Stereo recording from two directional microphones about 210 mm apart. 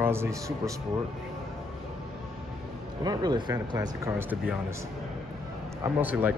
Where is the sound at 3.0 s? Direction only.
20° right (ahead or behind).